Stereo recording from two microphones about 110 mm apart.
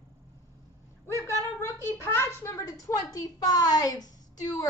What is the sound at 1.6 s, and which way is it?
A woman's voice, 20° left (ahead or behind).